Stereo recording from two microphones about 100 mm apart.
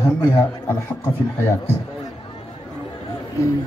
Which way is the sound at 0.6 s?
25° left (ahead or behind).